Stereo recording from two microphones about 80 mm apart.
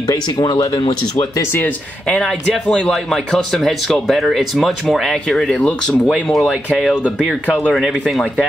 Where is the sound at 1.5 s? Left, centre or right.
Centre.